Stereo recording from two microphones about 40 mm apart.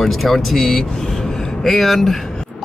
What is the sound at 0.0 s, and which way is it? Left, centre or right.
Speech, centre.